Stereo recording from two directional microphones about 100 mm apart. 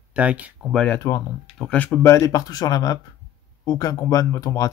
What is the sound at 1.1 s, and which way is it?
Speech, 35° left (ahead or behind).